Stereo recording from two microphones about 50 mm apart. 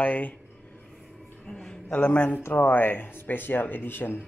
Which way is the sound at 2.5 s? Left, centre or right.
Left.